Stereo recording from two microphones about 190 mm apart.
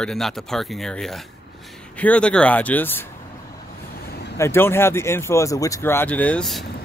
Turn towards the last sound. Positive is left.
turn(degrees=0)  # may be behind; listen again after turning